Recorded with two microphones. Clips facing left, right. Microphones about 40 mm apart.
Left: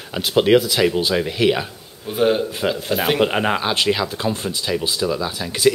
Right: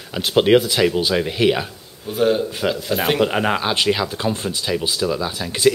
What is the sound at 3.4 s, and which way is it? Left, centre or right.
Speech, centre.